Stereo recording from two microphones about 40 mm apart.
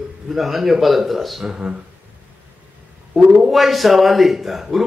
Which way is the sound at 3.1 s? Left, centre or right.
Centre.